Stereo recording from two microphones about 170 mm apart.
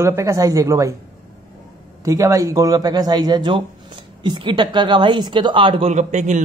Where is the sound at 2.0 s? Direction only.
20° right (ahead or behind).